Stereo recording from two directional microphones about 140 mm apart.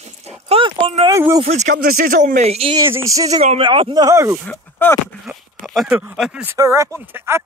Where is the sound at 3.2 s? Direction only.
55° right (ahead or behind).